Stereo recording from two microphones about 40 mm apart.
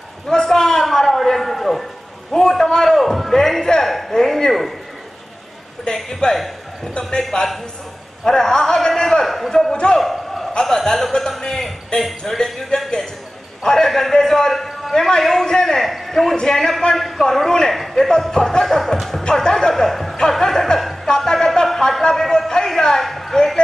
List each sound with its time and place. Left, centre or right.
0.3 s a man's voice: centre
5.9 s a man's voice: centre
9.7 s speech: left
9.9 s a sound: centre
10.6 s a man's voice: centre
16.3 s a man's voice: centre
16.9 s a man's voice: centre
19.7 s speech: centre
20.2 s chuckle: centre
21.2 s a sound: centre
22.1 s a man's voice: centre